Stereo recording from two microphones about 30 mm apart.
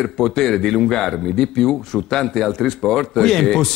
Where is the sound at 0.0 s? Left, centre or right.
Centre.